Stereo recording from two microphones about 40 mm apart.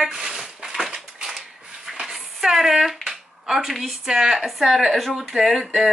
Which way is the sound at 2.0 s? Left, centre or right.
Centre.